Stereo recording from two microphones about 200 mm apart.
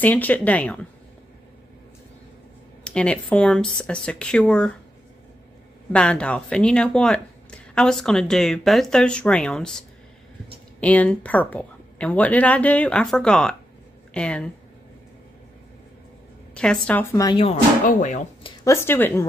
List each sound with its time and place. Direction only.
0.0 s a woman's voice: 10° left (ahead or behind)
2.8 s speech: 5° left (ahead or behind)
5.9 s a woman's voice: 5° left (ahead or behind)
16.5 s a woman's voice: 5° left (ahead or behind)
17.4 s speech: 35° left (ahead or behind)
18.4 s speech: 15° left (ahead or behind)